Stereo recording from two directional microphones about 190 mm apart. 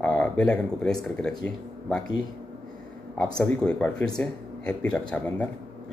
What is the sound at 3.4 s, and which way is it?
Speech, 5° left (ahead or behind).